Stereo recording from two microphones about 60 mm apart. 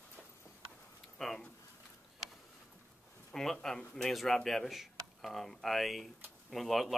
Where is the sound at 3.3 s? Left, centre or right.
Centre.